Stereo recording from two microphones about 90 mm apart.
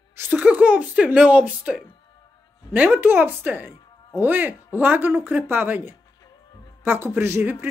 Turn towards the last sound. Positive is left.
turn(degrees=-25)  # may be behind; listen again after turning